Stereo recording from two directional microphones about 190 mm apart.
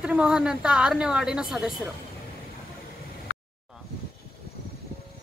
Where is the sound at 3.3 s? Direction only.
70° left (ahead or behind).